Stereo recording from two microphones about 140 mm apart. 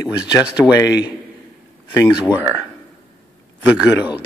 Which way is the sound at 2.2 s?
10° right (ahead or behind).